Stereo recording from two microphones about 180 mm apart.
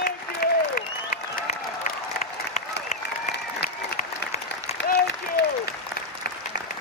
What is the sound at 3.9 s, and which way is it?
Applause, 35° left (ahead or behind).